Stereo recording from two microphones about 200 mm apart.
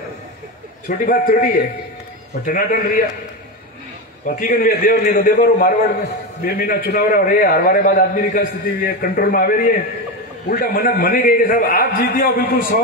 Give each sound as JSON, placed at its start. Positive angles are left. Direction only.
{"t": 0.8, "sound": "a man's voice", "side_deg": 45}
{"t": 4.3, "sound": "a man's voice", "side_deg": 45}